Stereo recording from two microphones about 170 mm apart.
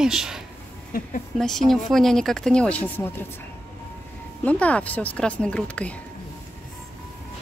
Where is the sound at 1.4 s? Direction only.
Centre (ahead or behind).